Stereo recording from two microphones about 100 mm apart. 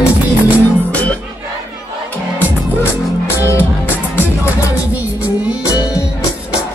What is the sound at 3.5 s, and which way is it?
Music, 20° left (ahead or behind).